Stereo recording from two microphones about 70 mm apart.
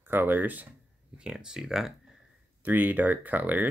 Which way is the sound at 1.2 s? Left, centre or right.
Centre.